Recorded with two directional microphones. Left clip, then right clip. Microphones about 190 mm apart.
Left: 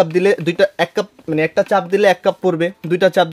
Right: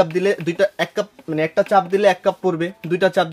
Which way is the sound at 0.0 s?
50° left (ahead or behind).